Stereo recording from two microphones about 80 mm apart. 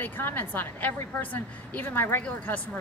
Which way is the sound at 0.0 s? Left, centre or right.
Left.